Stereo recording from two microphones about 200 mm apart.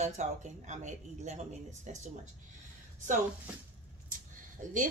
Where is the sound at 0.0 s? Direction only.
35° right (ahead or behind).